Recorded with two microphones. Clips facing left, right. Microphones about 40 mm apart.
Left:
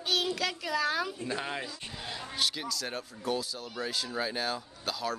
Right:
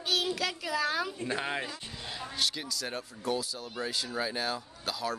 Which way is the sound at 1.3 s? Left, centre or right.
Centre.